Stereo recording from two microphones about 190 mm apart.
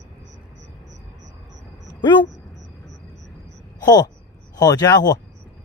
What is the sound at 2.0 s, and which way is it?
Speech, 25° left (ahead or behind).